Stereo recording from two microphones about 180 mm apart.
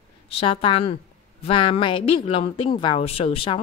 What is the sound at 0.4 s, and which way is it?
Speech, 30° left (ahead or behind).